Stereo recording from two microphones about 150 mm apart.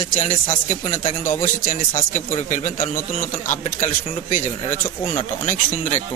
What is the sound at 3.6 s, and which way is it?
Speech, 55° left (ahead or behind).